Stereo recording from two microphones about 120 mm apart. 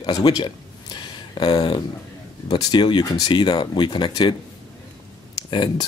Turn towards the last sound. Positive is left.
turn(degrees=40)  # may be behind; listen again after turning